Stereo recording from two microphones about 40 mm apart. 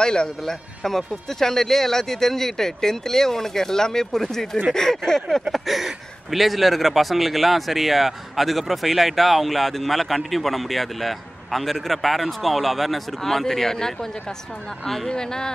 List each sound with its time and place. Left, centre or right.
0.0 s a man's voice: left
5.5 s speech: centre
15.0 s speech: centre